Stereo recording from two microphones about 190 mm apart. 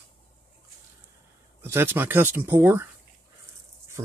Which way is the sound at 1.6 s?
10° right (ahead or behind).